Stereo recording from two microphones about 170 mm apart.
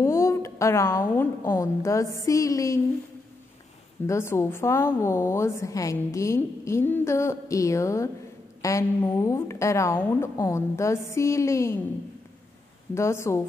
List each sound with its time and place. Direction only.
0.0 s a woman's voice: 15° left (ahead or behind)
2.2 s a sound: 20° left (ahead or behind)
4.1 s a woman's voice: 15° left (ahead or behind)
12.9 s a woman's voice: 15° left (ahead or behind)